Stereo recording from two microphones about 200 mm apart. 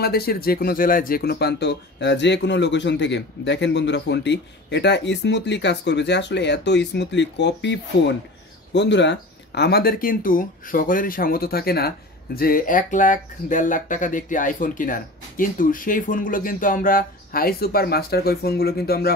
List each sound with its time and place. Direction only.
0.0 s speech: 50° left (ahead or behind)